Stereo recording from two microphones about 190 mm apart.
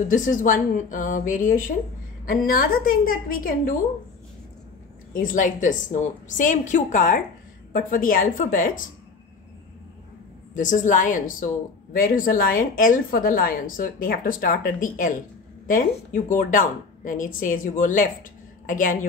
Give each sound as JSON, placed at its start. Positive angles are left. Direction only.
{"t": 0.1, "sound": "a woman's voice", "side_deg": 45}
{"t": 5.2, "sound": "a woman's voice", "side_deg": 45}
{"t": 10.5, "sound": "a woman's voice", "side_deg": 40}